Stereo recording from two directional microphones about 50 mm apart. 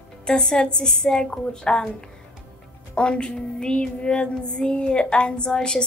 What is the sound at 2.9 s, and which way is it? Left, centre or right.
Speech, centre.